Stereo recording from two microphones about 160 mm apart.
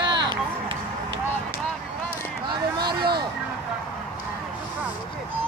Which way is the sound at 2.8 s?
80° right.